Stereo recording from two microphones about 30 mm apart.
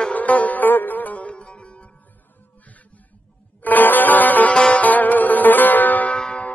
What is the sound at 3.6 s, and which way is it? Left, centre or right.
Music, left.